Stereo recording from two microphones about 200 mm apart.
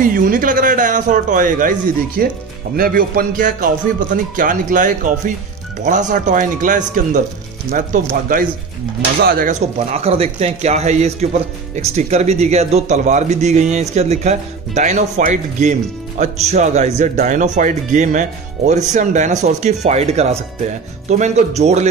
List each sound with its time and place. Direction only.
0.0 s speech: 45° right (ahead or behind)
9.9 s speech: 30° right (ahead or behind)